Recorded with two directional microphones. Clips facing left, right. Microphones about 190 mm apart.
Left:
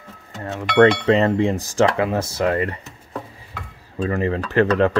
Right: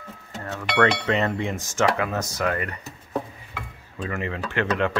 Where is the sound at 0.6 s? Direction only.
30° left (ahead or behind).